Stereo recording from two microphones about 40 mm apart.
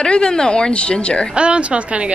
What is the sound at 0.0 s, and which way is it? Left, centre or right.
Speech, left.